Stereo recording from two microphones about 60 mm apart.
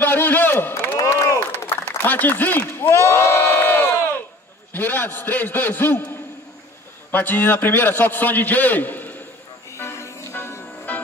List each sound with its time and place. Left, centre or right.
0.0 s a sound: left
0.9 s a sound: left
1.9 s a man's voice: left
2.9 s crowd: left
4.7 s a man's voice: left
9.7 s music: left
10.3 s music: left